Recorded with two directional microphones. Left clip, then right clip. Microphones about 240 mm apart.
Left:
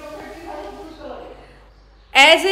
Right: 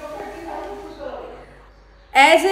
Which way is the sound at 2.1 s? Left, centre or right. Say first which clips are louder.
Left 1 dB; centre.